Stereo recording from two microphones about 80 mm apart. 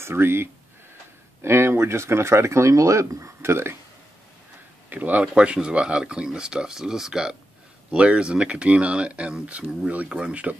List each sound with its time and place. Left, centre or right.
0.0 s speech: right
4.8 s speech: right